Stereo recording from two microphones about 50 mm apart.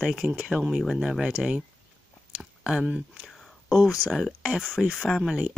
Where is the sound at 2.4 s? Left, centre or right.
Centre.